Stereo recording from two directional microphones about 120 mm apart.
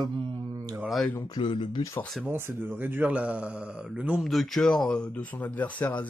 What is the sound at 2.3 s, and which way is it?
Speech, 20° right (ahead or behind).